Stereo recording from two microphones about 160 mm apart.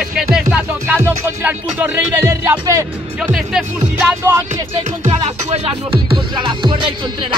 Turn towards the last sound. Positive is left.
turn(degrees=-30)  # may be behind; listen again after turning